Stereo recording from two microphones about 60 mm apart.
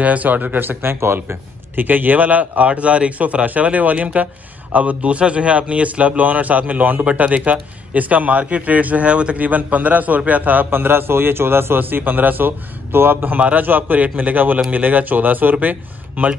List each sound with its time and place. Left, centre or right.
0.0 s a man's voice: right